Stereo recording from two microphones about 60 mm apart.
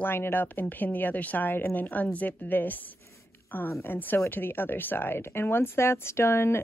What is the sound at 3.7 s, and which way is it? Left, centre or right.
Speech, left.